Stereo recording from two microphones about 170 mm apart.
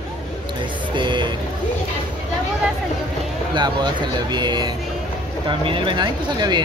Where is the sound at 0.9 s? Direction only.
25° right (ahead or behind).